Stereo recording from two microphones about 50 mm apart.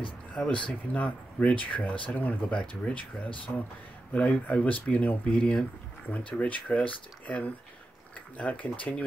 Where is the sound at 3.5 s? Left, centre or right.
Left.